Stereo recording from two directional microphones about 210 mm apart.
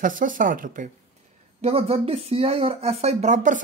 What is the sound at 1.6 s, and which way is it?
Speech, 30° right (ahead or behind).